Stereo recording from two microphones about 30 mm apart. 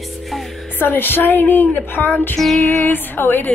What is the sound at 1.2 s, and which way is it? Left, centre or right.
Speech, left.